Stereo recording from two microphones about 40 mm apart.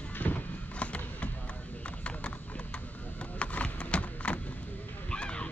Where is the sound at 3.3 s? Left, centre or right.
Left.